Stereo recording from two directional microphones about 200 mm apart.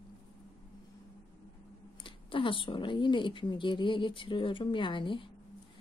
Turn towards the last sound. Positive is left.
turn(degrees=25)  # may be behind; listen again after turning